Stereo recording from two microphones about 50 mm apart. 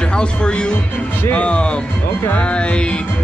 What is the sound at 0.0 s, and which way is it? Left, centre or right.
Speech, left.